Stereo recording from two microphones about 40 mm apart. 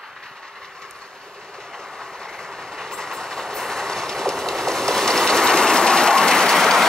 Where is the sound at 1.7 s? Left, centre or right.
Centre.